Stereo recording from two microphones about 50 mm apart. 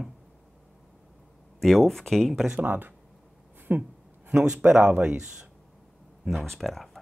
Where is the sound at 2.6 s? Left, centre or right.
Right.